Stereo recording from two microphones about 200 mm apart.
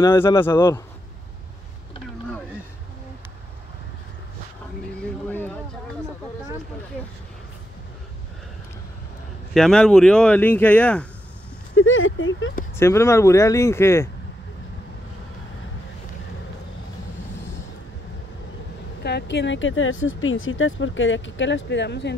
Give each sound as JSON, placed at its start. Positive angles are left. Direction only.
{"t": 0.0, "sound": "speech", "side_deg": 15}
{"t": 5.0, "sound": "a sound", "side_deg": 10}
{"t": 9.5, "sound": "speech", "side_deg": 0}
{"t": 11.7, "sound": "speech", "side_deg": 80}
{"t": 12.7, "sound": "speech", "side_deg": 15}
{"t": 19.0, "sound": "speech", "side_deg": 60}